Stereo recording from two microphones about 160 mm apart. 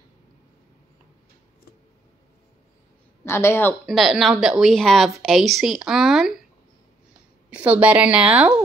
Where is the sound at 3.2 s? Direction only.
15° left (ahead or behind).